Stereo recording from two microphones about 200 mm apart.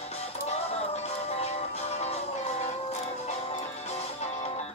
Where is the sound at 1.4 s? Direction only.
30° left (ahead or behind).